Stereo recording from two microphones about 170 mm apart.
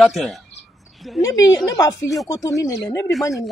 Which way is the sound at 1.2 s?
20° left (ahead or behind).